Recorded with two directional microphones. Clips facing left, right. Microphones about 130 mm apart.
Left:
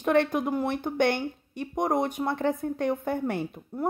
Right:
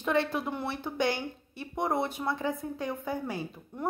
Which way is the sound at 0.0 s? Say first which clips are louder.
Left 5 dB; 55° left (ahead or behind).